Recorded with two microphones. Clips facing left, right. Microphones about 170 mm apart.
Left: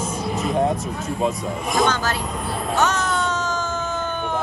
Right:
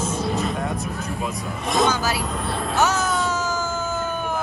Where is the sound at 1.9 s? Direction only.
10° right (ahead or behind).